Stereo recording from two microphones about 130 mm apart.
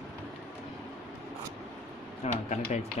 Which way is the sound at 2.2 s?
60° left (ahead or behind).